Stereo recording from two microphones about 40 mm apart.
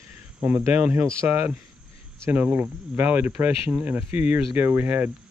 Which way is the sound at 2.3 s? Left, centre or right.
Right.